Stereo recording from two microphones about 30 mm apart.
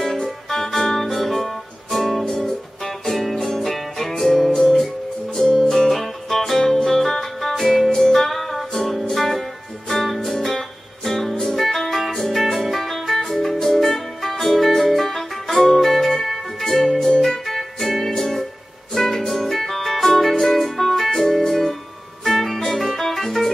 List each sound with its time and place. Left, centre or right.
0.0 s music: centre
2.2 s music: centre
3.1 s music: centre
4.5 s music: centre